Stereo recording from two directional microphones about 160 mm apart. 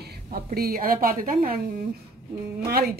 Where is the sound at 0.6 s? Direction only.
65° right (ahead or behind).